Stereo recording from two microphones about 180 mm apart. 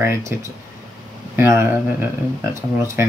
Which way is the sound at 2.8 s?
15° right (ahead or behind).